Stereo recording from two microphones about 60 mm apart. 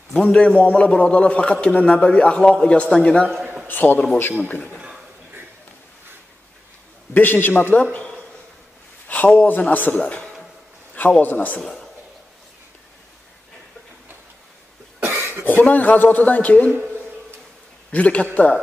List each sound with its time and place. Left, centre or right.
0.1 s a man's voice: centre
3.6 s a man's voice: left
4.7 s a sound: centre
7.2 s a man's voice: left
11.6 s a man's voice: centre
15.0 s cough: right
15.4 s a man's voice: left
17.9 s a man's voice: left